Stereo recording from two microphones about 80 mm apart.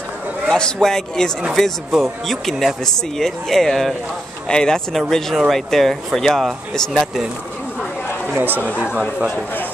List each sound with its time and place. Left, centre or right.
0.5 s a man's voice: centre
8.4 s speech: right